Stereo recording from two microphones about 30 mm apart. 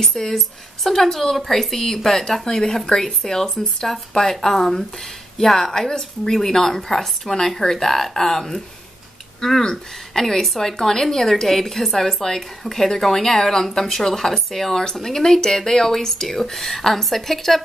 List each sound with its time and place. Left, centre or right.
0.2 s speech: centre
2.4 s speech: left
2.9 s speech: left
3.3 s speech: centre
9.6 s speech: left
10.4 s speech: centre